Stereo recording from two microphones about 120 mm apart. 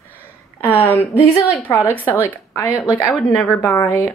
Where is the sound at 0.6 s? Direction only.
15° left (ahead or behind).